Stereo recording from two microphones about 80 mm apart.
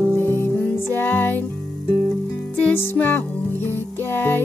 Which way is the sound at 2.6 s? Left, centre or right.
Left.